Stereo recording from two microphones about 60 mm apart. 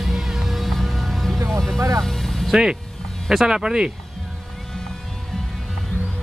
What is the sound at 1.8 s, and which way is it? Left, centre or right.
Vehicle, right.